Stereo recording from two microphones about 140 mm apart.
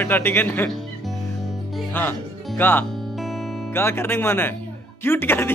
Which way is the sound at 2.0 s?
15° left (ahead or behind).